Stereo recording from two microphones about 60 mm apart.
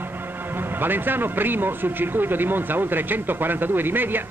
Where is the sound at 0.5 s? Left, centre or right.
Right.